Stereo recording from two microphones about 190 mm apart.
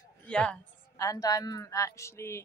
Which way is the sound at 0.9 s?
15° left (ahead or behind).